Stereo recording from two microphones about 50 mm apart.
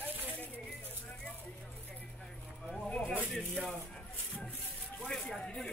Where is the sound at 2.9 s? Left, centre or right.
Left.